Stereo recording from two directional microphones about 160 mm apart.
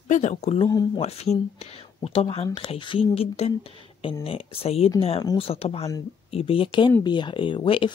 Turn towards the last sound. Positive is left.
turn(degrees=35)  # may be behind; listen again after turning